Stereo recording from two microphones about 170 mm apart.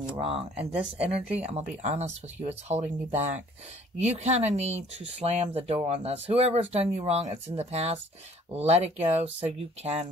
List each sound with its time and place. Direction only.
0.1 s speech: 35° right (ahead or behind)